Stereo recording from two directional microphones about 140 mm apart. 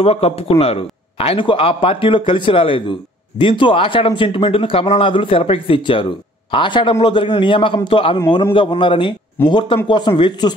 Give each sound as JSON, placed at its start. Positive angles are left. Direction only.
{"t": 0.0, "sound": "a man's voice", "side_deg": 45}